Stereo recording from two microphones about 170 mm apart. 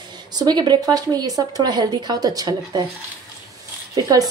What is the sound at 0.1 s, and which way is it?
A woman's voice, 25° right (ahead or behind).